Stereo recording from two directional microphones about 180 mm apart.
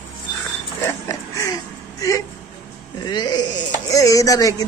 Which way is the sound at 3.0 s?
25° left (ahead or behind).